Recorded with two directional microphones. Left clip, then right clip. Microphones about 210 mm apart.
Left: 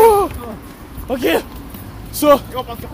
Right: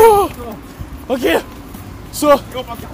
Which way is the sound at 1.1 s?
15° right (ahead or behind).